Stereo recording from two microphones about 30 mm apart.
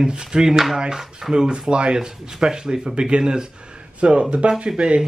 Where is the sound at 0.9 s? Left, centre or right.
Centre; by 1.9 s right.